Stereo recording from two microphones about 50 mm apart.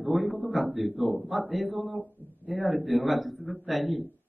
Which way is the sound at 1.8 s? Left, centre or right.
Right.